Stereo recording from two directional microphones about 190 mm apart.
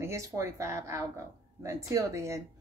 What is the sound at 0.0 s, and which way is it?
Speech, 15° right (ahead or behind).